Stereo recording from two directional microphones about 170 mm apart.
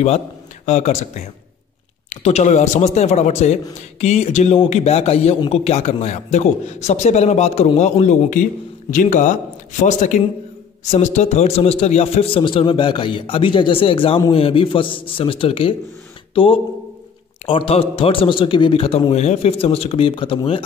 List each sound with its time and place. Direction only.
0.7 s a man's voice: 45° left (ahead or behind)